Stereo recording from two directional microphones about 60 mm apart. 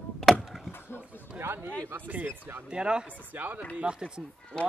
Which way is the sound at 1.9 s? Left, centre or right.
Right.